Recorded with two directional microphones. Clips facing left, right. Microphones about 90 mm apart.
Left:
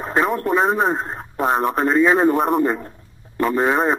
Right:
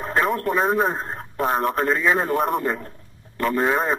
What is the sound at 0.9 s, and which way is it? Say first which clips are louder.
Radio: left 3 dB; 15° left (ahead or behind).